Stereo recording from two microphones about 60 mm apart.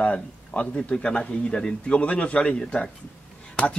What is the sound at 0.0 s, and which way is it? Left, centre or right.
Speech, centre.